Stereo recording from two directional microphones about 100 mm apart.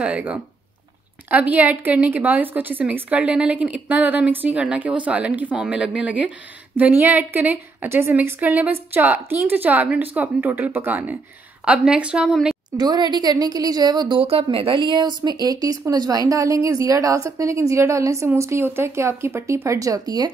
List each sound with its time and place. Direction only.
0.0 s a woman's voice: 15° right (ahead or behind)
12.7 s speech: 45° right (ahead or behind)
14.2 s a woman's voice: 75° right (ahead or behind); by 20.2 s 35° right (ahead or behind)